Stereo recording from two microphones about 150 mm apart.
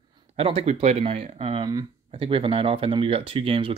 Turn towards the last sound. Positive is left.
turn(degrees=-40)  # may be behind; listen again after turning